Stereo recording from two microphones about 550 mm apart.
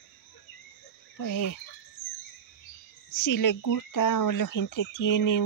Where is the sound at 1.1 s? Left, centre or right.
Left.